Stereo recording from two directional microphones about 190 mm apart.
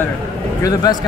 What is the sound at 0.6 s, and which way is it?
Speech, 15° left (ahead or behind).